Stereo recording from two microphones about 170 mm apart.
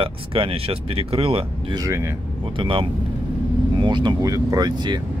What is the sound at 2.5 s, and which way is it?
Speech, 30° right (ahead or behind).